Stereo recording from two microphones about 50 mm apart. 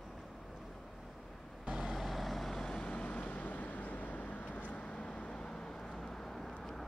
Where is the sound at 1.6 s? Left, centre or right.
Centre.